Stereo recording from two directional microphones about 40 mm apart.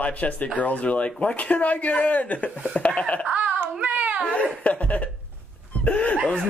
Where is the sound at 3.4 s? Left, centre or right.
Right.